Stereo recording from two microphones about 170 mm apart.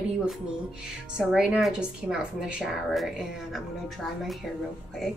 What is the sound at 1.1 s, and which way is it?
A woman's voice, 5° right (ahead or behind).